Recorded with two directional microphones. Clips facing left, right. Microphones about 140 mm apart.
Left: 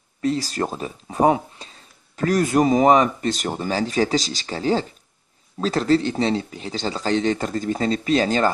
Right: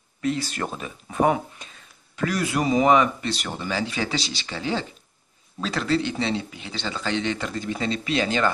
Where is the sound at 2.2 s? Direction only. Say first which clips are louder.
Left 6 dB; 45° left (ahead or behind).